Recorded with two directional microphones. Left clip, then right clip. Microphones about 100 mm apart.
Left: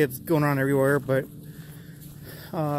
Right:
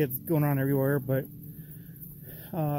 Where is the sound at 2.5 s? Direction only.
35° right (ahead or behind).